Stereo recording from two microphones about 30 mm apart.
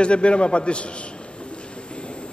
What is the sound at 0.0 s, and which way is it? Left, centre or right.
Speech, left.